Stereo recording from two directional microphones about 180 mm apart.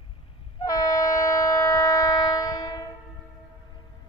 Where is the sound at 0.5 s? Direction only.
20° left (ahead or behind).